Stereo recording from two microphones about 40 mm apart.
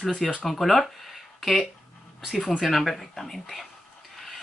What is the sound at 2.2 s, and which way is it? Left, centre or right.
Speech, centre.